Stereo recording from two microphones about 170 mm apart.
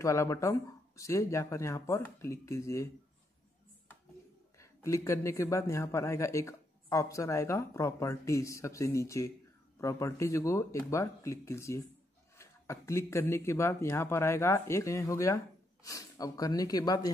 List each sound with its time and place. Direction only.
0.0 s speech: 15° left (ahead or behind)
4.6 s speech: 15° left (ahead or behind)